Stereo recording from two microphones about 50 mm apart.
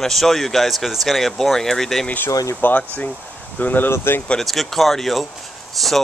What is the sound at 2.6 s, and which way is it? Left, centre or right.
Speech, left.